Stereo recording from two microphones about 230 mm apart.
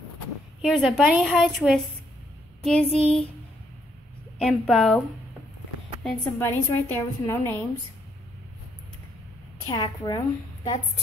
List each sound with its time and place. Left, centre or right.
0.6 s a woman's voice: centre
4.4 s a woman's voice: centre
6.0 s a woman's voice: centre
9.7 s a woman's voice: centre